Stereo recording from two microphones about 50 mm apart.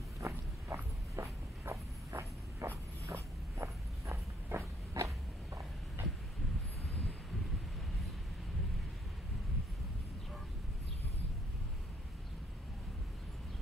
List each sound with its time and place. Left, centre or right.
0.2 s walk: right
3.1 s walk: right